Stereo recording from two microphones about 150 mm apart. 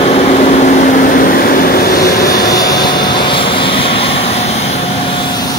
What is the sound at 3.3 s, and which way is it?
Vehicle, 35° left (ahead or behind).